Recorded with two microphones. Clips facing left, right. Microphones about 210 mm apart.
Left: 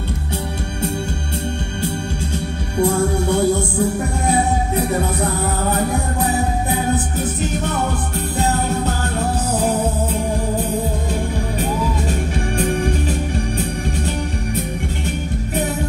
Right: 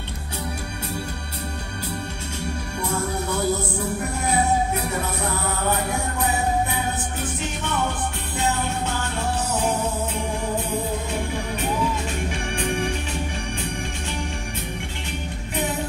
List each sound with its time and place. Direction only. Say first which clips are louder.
2.8 s music: left 10 dB; 30° left (ahead or behind)
6.7 s music: left 7 dB; 40° left (ahead or behind)
12.5 s music: left 6 dB; 40° left (ahead or behind)